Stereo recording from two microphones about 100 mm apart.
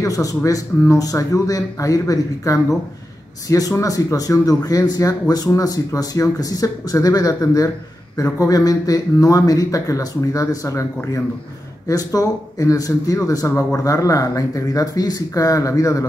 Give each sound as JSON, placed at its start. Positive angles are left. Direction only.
{"t": 0.0, "sound": "a man's voice", "side_deg": 35}
{"t": 11.9, "sound": "a man's voice", "side_deg": 35}